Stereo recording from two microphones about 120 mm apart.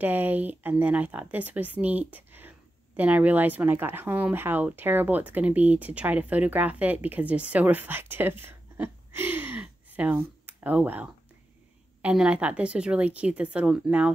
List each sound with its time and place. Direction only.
0.0 s speech: 15° right (ahead or behind)